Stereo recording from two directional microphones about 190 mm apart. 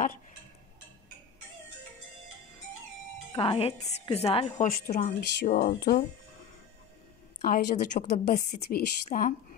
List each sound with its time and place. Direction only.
3.3 s a woman's voice: 30° left (ahead or behind)
4.6 s a woman's voice: 45° left (ahead or behind)
5.8 s speech: 55° left (ahead or behind)
7.4 s a woman's voice: 40° left (ahead or behind)
8.3 s a woman's voice: 55° left (ahead or behind)